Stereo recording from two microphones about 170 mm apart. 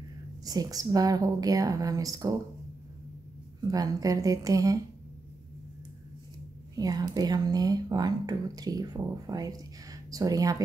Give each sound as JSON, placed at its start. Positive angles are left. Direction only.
{"t": 0.5, "sound": "speech", "side_deg": -20}
{"t": 3.6, "sound": "speech", "side_deg": -20}
{"t": 6.7, "sound": "speech", "side_deg": -20}